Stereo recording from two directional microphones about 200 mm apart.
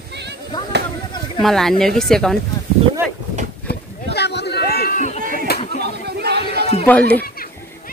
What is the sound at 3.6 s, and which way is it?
Boat, 55° left (ahead or behind).